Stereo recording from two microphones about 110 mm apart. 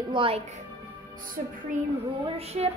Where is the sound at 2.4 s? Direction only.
70° right (ahead or behind).